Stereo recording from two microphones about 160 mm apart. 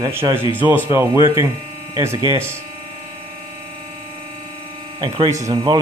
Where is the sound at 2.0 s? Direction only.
15° right (ahead or behind).